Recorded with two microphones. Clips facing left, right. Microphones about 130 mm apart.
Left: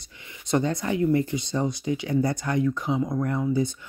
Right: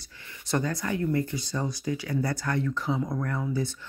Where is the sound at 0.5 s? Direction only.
20° left (ahead or behind).